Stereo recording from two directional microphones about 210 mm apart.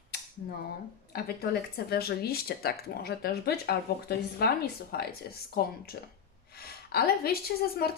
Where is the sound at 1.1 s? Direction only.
50° left (ahead or behind).